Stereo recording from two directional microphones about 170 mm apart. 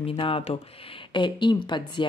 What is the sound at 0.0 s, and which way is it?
Speech, 30° left (ahead or behind).